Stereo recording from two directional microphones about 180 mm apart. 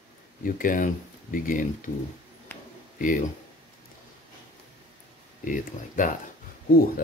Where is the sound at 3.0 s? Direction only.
50° left (ahead or behind).